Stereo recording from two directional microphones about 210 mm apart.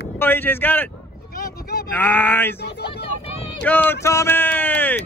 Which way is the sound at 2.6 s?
50° left (ahead or behind).